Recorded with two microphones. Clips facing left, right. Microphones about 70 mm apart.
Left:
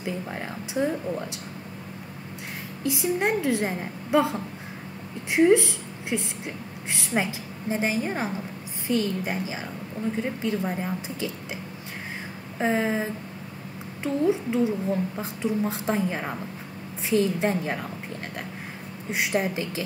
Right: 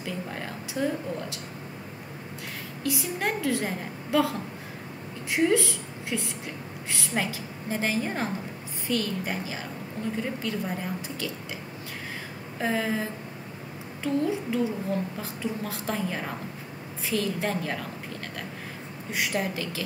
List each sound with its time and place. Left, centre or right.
0.0 s a sound: centre
2.8 s a woman's voice: left
12.5 s a woman's voice: left
19.0 s a woman's voice: left